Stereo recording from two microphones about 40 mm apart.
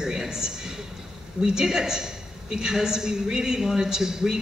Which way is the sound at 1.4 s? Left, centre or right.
Centre.